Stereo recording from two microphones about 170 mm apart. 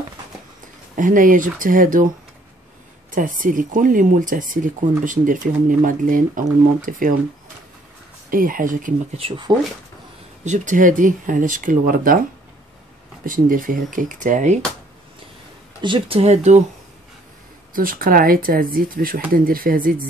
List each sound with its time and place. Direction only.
0.9 s speech: 50° right (ahead or behind)
3.1 s speech: 50° right (ahead or behind)
8.3 s speech: 55° right (ahead or behind)
10.4 s speech: 45° right (ahead or behind)
15.8 s speech: 30° right (ahead or behind)
17.7 s speech: 55° right (ahead or behind)